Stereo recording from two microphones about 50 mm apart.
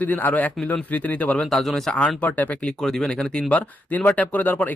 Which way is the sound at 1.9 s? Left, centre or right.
Centre.